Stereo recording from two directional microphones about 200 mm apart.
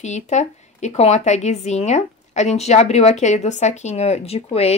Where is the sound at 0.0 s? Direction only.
35° left (ahead or behind).